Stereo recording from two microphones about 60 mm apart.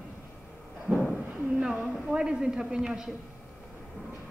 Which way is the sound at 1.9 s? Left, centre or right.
Centre.